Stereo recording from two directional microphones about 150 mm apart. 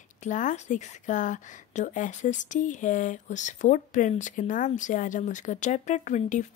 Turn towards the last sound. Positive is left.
turn(degrees=50)  # may be behind; listen again after turning